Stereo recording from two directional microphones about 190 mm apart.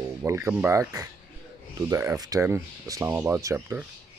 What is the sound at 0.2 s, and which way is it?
Speech, 15° right (ahead or behind).